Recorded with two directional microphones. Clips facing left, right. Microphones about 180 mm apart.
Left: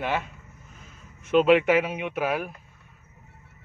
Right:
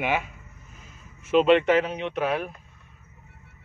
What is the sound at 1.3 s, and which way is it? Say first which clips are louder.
Speech: even; 5° left (ahead or behind).